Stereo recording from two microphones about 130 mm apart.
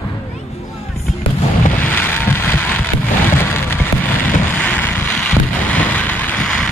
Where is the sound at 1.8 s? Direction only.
15° left (ahead or behind).